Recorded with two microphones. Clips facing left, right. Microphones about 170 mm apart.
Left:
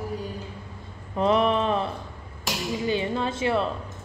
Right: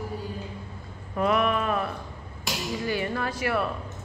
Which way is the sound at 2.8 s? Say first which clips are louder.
Left 3 dB; 20° left (ahead or behind).